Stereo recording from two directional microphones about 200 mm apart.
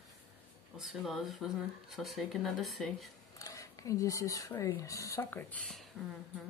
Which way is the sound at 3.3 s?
15° left (ahead or behind).